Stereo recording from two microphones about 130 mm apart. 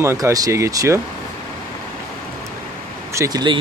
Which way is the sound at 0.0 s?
25° right (ahead or behind).